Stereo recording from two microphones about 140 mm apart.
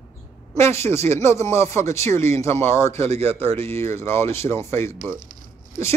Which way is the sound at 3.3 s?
15° left (ahead or behind).